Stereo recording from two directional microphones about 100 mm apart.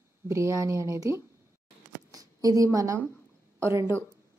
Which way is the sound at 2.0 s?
35° right (ahead or behind).